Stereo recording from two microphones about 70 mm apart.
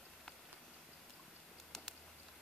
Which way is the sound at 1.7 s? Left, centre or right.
Centre.